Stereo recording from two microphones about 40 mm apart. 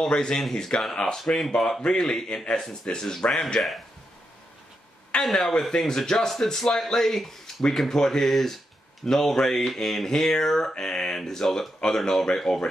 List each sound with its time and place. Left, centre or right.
0.1 s speech: left
0.4 s a man's voice: centre
5.2 s a man's voice: centre